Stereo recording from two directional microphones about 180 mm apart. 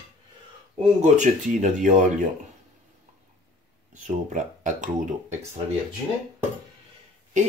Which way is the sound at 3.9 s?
45° right (ahead or behind).